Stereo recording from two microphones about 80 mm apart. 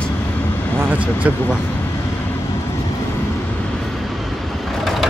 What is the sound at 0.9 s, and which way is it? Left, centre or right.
Speech, centre.